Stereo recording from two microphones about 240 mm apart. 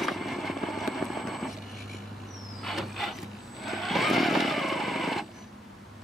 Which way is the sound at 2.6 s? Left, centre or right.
Centre.